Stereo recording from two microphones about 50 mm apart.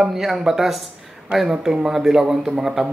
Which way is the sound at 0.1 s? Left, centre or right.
Centre.